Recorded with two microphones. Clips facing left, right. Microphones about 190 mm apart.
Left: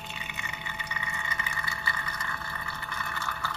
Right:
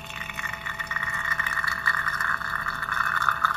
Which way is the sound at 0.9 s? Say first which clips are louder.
Right 2 dB; 20° left (ahead or behind).